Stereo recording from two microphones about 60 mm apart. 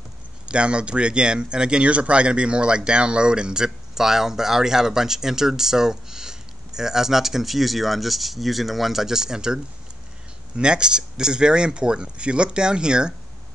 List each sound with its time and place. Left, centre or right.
0.5 s speech: centre